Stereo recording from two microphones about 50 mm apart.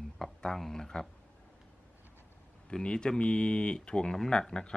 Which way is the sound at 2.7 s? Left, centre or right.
Centre.